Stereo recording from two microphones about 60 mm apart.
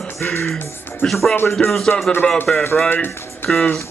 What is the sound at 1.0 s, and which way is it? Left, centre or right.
Speech, centre.